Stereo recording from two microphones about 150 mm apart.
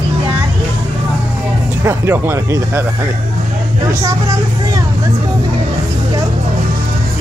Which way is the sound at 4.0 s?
25° right (ahead or behind).